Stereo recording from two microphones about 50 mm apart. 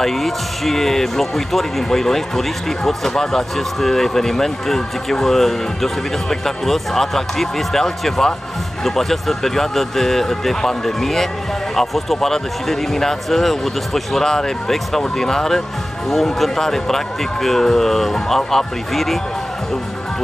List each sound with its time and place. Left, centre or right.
0.0 s speech: centre